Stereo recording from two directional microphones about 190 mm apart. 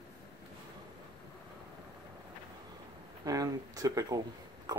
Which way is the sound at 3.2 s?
20° right (ahead or behind).